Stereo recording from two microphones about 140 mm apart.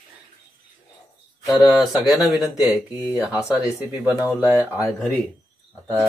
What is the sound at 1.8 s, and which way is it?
Speech, centre (ahead or behind).